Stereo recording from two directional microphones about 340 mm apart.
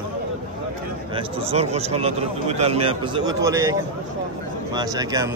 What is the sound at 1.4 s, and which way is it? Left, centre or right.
A man's voice, centre.